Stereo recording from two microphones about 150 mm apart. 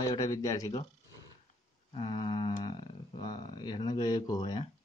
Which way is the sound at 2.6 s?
30° left (ahead or behind).